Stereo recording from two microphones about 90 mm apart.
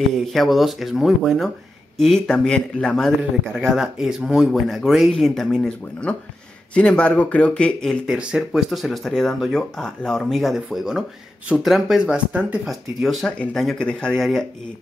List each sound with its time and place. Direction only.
0.1 s speech: centre (ahead or behind)
3.5 s speech: 5° right (ahead or behind); by 8.0 s 10° left (ahead or behind)
8.1 s speech: 10° right (ahead or behind)
12.3 s speech: 15° right (ahead or behind)
12.6 s speech: centre (ahead or behind)
13.4 s speech: 10° left (ahead or behind)